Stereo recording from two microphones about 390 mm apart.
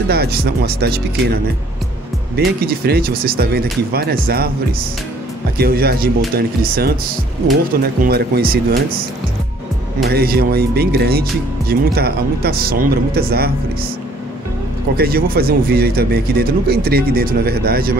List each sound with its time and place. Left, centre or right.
0.1 s speech: right
2.6 s speech: right
5.6 s speech: right
8.0 s speech: right
10.0 s speech: right
15.0 s speech: right